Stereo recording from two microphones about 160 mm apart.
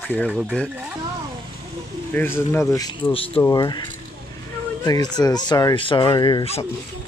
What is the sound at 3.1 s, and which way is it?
Speech, 35° left (ahead or behind).